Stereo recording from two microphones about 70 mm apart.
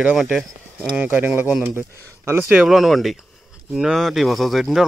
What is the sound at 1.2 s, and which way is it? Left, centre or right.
Speech, right.